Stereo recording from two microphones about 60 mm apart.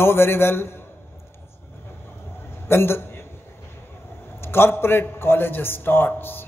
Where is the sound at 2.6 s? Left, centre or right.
Left.